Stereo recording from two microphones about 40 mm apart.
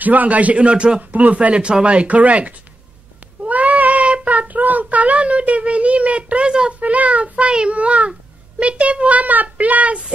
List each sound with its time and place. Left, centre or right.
0.0 s a child's voice: right
1.1 s a child's voice: right
1.5 s a child's voice: right
3.4 s child singing: right
6.7 s a child's voice: right